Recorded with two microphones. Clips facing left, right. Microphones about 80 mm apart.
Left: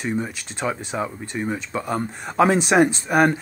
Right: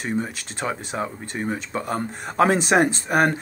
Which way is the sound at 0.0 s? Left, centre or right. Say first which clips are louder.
Left 1 dB; right.